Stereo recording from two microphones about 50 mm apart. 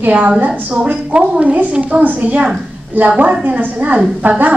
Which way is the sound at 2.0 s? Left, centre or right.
Right.